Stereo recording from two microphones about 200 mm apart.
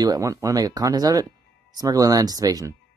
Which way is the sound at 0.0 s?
15° right (ahead or behind).